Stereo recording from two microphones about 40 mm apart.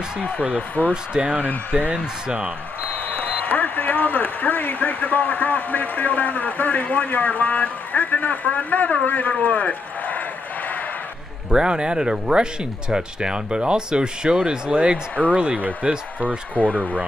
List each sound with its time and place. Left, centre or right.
0.6 s speech: left
1.1 s speech: right
3.2 s speech: left
11.5 s speech: right
16.2 s speech: right